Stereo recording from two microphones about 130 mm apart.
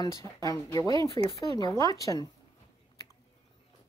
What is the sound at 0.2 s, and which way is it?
Speech, 25° left (ahead or behind).